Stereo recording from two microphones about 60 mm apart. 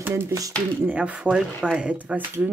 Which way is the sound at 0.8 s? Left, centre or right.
Right.